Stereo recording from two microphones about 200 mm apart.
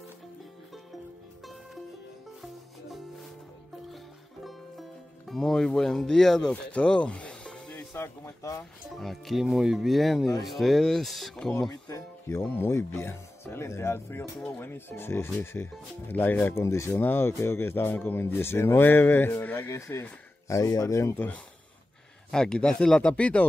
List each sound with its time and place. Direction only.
2.4 s music: centre (ahead or behind)
5.3 s speech: centre (ahead or behind)
9.0 s speech: centre (ahead or behind)
11.7 s speech: 15° left (ahead or behind)